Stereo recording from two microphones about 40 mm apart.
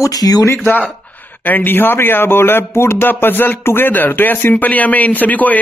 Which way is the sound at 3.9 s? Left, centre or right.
Left.